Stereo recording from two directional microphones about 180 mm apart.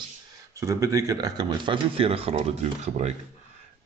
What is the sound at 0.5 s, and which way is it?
Speech, 15° right (ahead or behind).